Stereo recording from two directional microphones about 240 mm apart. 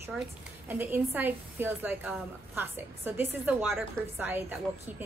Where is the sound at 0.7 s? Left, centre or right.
Centre.